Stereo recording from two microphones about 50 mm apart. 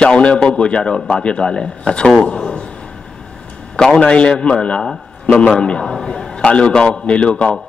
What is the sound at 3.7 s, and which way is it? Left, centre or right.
A man's voice, centre.